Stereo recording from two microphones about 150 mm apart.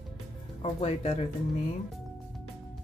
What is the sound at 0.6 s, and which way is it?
Speech, 45° left (ahead or behind).